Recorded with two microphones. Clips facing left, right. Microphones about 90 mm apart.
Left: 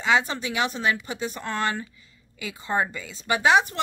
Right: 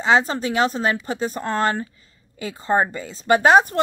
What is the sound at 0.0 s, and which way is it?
Speech, 35° right (ahead or behind).